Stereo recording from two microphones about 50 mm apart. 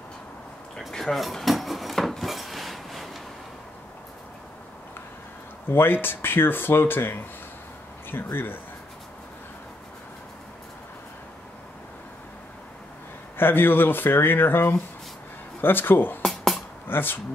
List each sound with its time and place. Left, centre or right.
0.7 s wood: centre
5.7 s speech: left
13.4 s speech: left
16.2 s a sound: centre
16.8 s speech: left